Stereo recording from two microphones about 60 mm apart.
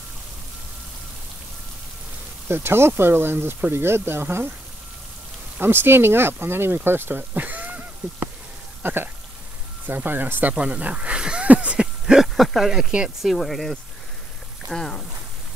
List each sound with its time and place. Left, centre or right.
2.4 s speech: right
5.6 s speech: right
8.8 s speech: right
10.5 s speech: centre
12.4 s speech: centre